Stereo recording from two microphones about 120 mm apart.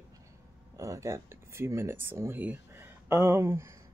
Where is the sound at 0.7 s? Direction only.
25° right (ahead or behind).